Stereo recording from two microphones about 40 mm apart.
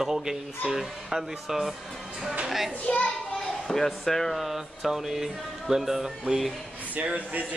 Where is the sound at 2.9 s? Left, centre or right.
Left.